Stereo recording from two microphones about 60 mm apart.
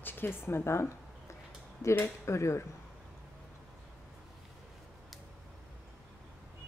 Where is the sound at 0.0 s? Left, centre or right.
Left.